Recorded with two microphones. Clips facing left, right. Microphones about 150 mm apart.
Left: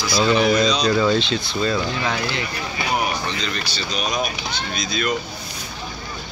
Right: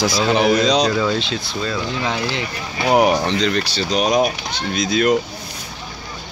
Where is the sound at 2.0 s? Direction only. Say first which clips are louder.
Right 2 dB; 25° right (ahead or behind).